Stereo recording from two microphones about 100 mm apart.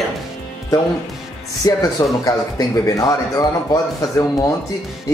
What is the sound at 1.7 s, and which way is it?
Speech, 35° left (ahead or behind).